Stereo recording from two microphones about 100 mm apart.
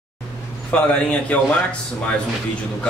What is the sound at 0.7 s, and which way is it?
Speech, 10° left (ahead or behind).